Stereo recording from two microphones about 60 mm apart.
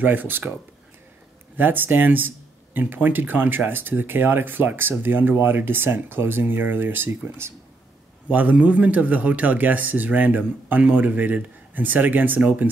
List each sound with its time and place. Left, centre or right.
0.0 s speech: right
1.6 s speech: right
8.3 s speech: right